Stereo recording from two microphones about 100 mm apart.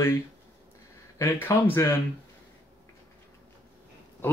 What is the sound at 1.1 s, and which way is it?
Speech, 30° left (ahead or behind).